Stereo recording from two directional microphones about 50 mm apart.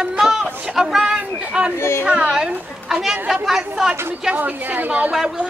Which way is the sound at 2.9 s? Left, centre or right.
Centre.